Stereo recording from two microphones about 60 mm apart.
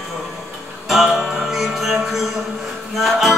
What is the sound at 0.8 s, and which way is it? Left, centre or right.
Music, centre.